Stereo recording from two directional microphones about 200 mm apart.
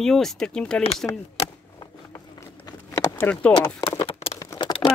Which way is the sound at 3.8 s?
25° left (ahead or behind).